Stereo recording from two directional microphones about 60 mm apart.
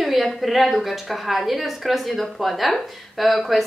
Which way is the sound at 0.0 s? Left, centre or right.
Centre.